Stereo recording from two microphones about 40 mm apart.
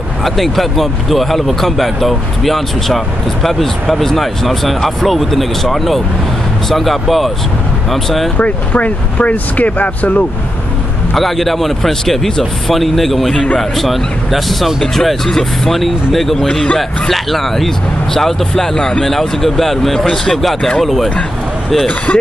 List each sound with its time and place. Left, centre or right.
0.2 s speech: centre
8.4 s speech: left
11.1 s speech: centre
14.8 s speech: centre
16.7 s speech: centre